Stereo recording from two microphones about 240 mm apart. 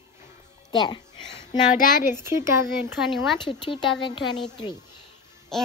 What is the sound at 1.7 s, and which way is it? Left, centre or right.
Speech, left.